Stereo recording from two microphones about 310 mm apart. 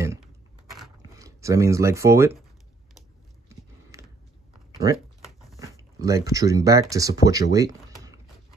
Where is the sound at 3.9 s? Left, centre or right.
Centre.